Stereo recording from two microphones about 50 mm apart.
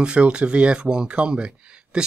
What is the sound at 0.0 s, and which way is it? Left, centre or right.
Speech, right.